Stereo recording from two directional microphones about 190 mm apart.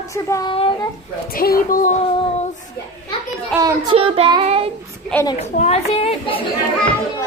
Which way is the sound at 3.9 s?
30° right (ahead or behind).